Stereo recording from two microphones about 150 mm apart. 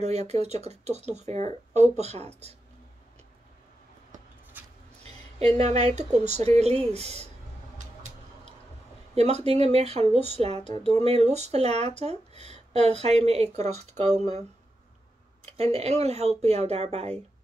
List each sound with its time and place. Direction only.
0.0 s speech: 45° right (ahead or behind)
4.6 s vehicle: 10° right (ahead or behind)
5.6 s speech: 45° right (ahead or behind)
9.1 s speech: 45° right (ahead or behind)
15.4 s speech: 45° right (ahead or behind)